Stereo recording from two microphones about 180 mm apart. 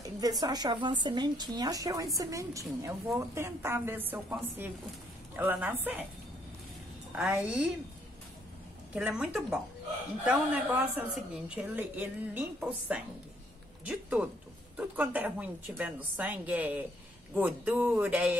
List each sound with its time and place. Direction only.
0.2 s a woman's voice: 20° right (ahead or behind)
7.1 s music: centre (ahead or behind)
7.4 s a woman's voice: 5° right (ahead or behind)
8.9 s a woman's voice: 5° right (ahead or behind)
14.2 s a woman's voice: 10° right (ahead or behind)